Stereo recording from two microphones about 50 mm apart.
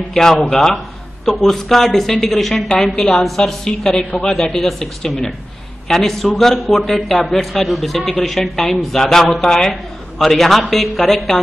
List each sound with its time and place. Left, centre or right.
0.1 s a woman's voice: centre